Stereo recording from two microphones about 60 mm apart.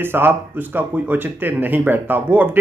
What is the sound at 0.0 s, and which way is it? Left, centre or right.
Speech, right.